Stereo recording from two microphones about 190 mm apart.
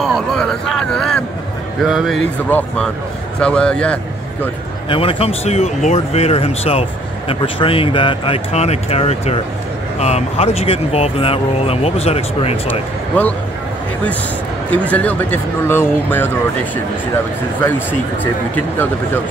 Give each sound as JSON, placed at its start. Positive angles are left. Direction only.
{"t": 0.0, "sound": "speech", "side_deg": 0}
{"t": 4.8, "sound": "speech", "side_deg": 30}
{"t": 12.6, "sound": "speech", "side_deg": 10}
{"t": 14.7, "sound": "speech", "side_deg": 5}
{"t": 17.6, "sound": "speech", "side_deg": 10}